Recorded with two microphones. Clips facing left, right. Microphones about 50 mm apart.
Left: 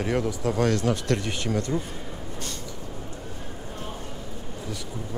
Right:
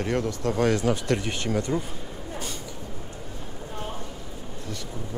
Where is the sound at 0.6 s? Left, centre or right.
Centre.